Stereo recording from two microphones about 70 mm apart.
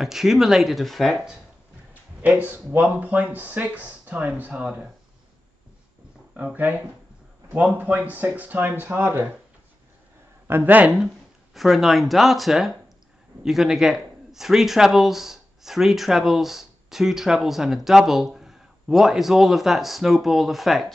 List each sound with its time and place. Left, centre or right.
0.0 s speech: centre
2.2 s speech: right
6.3 s speech: right
10.5 s speech: right
11.5 s speech: centre